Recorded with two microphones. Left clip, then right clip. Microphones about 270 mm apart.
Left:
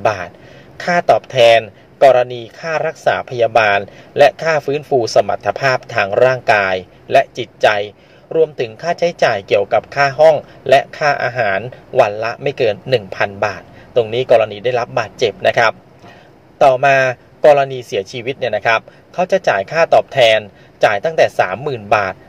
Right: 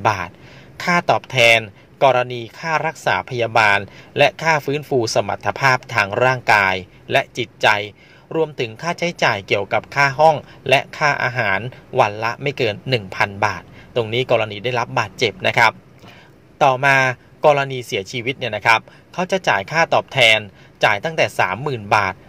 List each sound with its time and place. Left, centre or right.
0.0 s speech: right
16.5 s speech: right